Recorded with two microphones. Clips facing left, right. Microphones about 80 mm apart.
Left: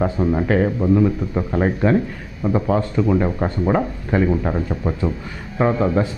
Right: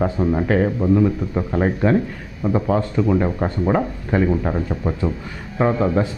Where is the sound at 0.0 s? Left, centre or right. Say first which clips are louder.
Even; left.